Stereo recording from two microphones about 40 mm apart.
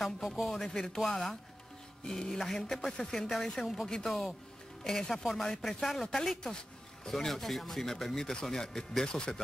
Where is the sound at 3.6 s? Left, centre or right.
Centre.